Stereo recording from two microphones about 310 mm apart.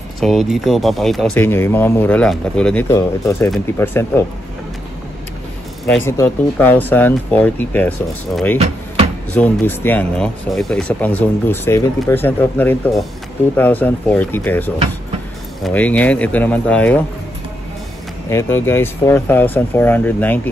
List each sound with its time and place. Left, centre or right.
0.2 s speech: centre
6.0 s speech: centre
8.5 s a sound: right
9.3 s speech: centre
18.3 s speech: centre